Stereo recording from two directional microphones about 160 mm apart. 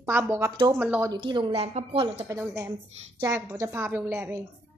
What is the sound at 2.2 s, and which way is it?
Speech, 15° right (ahead or behind).